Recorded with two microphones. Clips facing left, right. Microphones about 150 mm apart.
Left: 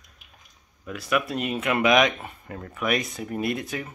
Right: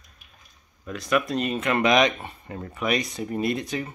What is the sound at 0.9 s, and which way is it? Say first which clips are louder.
A man's voice: right 2 dB; 10° left (ahead or behind).